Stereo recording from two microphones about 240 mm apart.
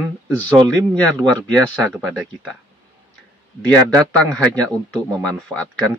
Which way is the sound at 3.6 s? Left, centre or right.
Centre.